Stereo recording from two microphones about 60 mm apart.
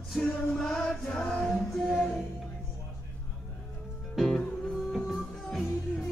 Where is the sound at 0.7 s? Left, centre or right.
Centre.